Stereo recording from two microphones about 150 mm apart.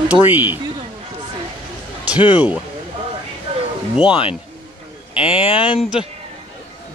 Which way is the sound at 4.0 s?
35° left (ahead or behind).